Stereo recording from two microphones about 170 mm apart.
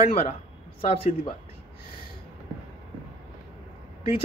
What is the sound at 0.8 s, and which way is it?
Speech, 35° left (ahead or behind).